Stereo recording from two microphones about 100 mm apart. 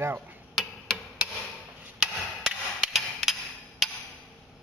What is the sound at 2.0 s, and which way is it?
Hammer, 5° right (ahead or behind).